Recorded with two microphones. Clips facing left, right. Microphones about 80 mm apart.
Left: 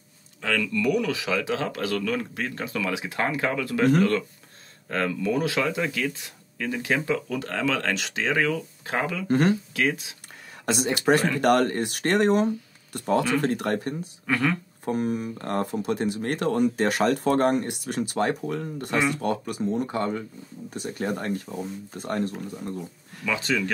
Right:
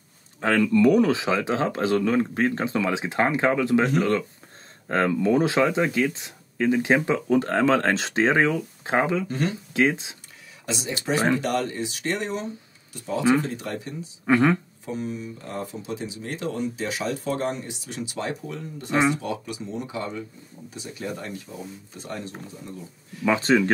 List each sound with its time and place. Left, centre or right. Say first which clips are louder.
0.4 s speech: right 7 dB; right
10.6 s speech: left 6 dB; left
14.2 s speech: right 6 dB; right
14.9 s speech: left 5 dB; left
23.2 s speech: right 6 dB; right